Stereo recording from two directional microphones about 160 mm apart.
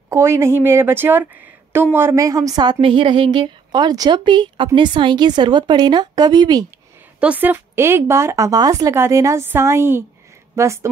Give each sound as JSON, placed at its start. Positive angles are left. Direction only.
{"t": 0.1, "sound": "a woman's voice", "side_deg": -15}
{"t": 7.2, "sound": "speech", "side_deg": -10}